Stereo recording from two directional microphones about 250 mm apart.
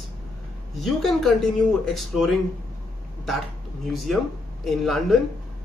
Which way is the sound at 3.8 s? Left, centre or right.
Centre.